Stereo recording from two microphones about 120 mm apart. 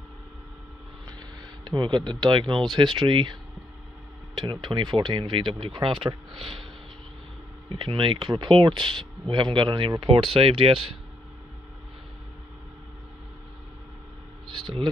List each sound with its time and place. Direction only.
1.6 s speech: 35° right (ahead or behind)
4.4 s speech: 40° right (ahead or behind)
7.7 s speech: 45° right (ahead or behind)
14.5 s a sound: 40° right (ahead or behind)